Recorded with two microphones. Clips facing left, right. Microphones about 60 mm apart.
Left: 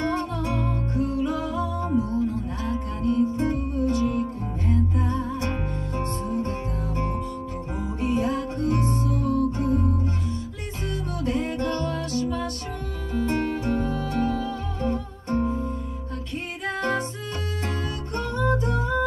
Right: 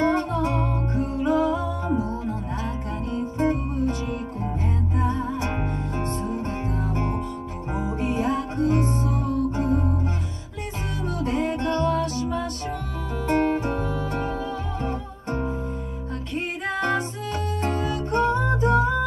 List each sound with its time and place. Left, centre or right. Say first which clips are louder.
0.0 s music: right 4 dB; right
11.1 s music: right 2 dB; right
16.6 s music: right 1 dB; right